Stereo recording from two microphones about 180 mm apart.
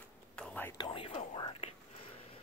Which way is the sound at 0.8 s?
30° left (ahead or behind).